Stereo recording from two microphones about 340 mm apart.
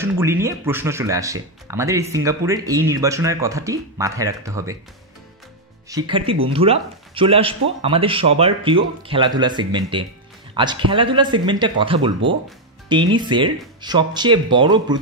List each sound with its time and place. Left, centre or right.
0.0 s speech: centre
5.9 s speech: centre
13.1 s speech: centre